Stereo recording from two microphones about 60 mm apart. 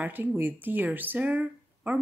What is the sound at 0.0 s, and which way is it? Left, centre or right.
Speech, right.